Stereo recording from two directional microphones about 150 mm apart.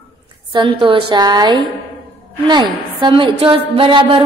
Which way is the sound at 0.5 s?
35° right (ahead or behind).